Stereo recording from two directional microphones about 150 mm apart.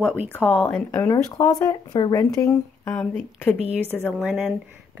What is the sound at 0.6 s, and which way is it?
Speech, 15° left (ahead or behind).